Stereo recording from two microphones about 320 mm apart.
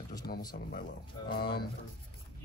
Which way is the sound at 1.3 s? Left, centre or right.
Left.